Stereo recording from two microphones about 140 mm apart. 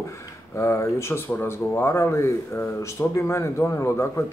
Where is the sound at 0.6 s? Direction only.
20° left (ahead or behind).